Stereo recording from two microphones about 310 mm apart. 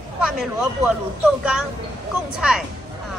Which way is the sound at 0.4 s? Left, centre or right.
Centre.